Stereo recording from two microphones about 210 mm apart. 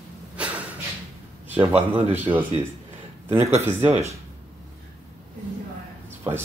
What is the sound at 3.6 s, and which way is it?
Speech, 10° right (ahead or behind).